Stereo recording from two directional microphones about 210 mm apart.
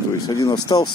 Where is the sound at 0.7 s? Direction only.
20° left (ahead or behind).